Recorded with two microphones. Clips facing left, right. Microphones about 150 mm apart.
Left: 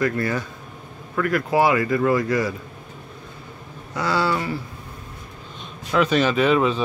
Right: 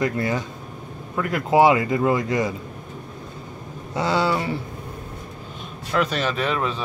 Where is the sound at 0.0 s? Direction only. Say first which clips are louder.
Even; 20° right (ahead or behind).